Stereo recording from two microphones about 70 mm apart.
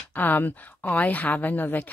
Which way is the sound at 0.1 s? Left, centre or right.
Left.